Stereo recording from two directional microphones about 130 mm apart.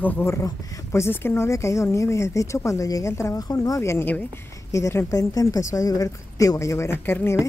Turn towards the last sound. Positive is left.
turn(degrees=20)  # may be behind; listen again after turning